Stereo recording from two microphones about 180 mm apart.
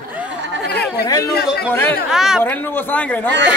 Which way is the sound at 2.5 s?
10° left (ahead or behind).